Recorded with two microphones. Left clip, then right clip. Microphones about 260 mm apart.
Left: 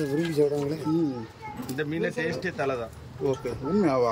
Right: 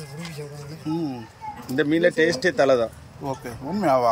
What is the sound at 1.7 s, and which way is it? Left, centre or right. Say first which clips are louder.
Speech: right 10 dB; right.